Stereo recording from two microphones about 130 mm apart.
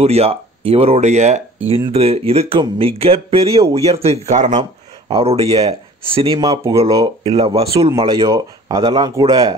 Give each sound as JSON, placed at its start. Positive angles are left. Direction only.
{"t": 0.0, "sound": "speech", "side_deg": -50}
{"t": 1.9, "sound": "speech", "side_deg": -50}
{"t": 5.0, "sound": "speech", "side_deg": -50}
{"t": 8.3, "sound": "speech", "side_deg": -30}